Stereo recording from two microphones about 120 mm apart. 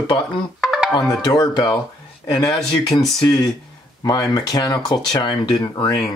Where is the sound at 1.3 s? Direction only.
30° left (ahead or behind).